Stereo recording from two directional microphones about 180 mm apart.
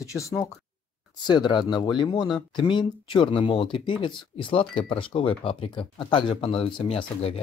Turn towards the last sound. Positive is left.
turn(degrees=30)  # may be behind; listen again after turning